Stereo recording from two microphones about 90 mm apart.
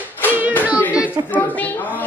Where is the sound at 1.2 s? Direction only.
20° left (ahead or behind).